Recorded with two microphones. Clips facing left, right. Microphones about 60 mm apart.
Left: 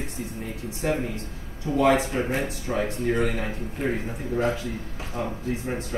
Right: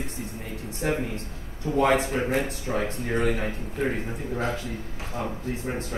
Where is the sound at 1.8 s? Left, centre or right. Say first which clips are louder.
Left 1 dB; right.